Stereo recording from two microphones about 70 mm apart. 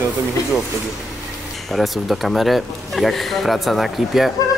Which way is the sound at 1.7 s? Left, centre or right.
Centre.